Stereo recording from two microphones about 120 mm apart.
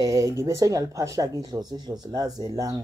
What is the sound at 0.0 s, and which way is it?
Speech, 25° right (ahead or behind).